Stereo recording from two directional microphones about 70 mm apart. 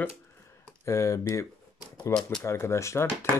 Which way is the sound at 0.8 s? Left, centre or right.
Left.